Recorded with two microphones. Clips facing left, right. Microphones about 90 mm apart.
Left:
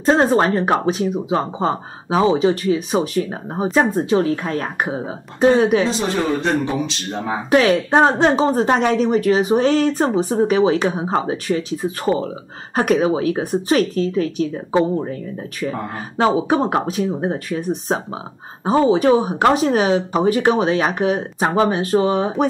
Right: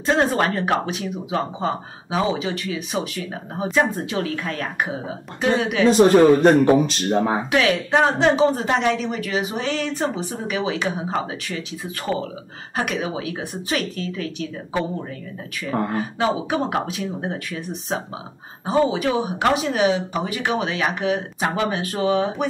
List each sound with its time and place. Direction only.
0.0 s speech: 35° left (ahead or behind)
5.9 s speech: 50° right (ahead or behind)
7.5 s speech: 30° left (ahead or behind)